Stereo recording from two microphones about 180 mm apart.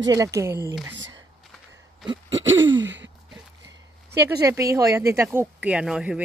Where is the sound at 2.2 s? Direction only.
90° right.